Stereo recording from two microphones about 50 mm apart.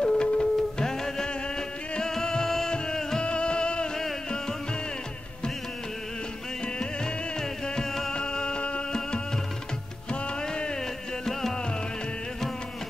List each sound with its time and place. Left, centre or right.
0.0 s music: centre
7.6 s music: centre